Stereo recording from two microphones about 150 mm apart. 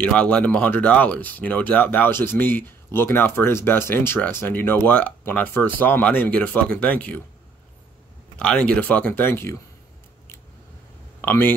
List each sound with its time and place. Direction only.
0.0 s speech: 5° left (ahead or behind)
8.4 s speech: 10° left (ahead or behind)
11.1 s speech: 15° left (ahead or behind)